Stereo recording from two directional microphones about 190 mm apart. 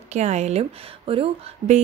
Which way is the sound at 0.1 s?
35° right (ahead or behind).